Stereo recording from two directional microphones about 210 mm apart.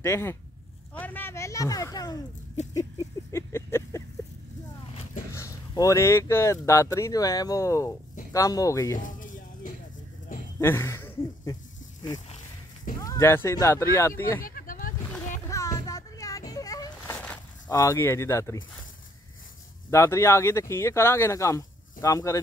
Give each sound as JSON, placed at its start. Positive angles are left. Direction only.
{"t": 0.0, "sound": "speech", "side_deg": 10}
{"t": 2.7, "sound": "a sound", "side_deg": 15}
{"t": 5.3, "sound": "speech", "side_deg": 15}
{"t": 9.0, "sound": "a sound", "side_deg": 40}
{"t": 10.6, "sound": "speech", "side_deg": 10}
{"t": 13.0, "sound": "speech", "side_deg": 15}
{"t": 14.4, "sound": "a sound", "side_deg": 40}
{"t": 15.4, "sound": "music", "side_deg": 15}
{"t": 19.9, "sound": "speech", "side_deg": 15}